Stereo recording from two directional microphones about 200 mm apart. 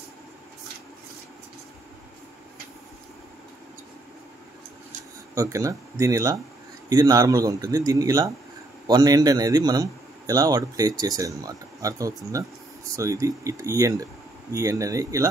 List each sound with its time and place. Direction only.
5.3 s a man's voice: 15° right (ahead or behind)